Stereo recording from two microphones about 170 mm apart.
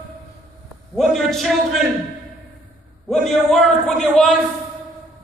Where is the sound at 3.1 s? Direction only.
5° left (ahead or behind).